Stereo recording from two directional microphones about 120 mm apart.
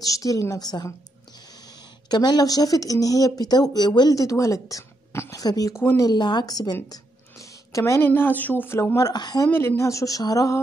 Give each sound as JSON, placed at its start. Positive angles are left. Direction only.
{"t": 0.0, "sound": "speech", "side_deg": 30}
{"t": 2.0, "sound": "speech", "side_deg": 35}
{"t": 6.0, "sound": "a woman's voice", "side_deg": 35}
{"t": 9.5, "sound": "speech", "side_deg": 20}